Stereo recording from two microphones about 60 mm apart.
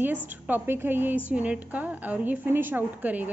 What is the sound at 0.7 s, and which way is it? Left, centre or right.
A woman's voice, right.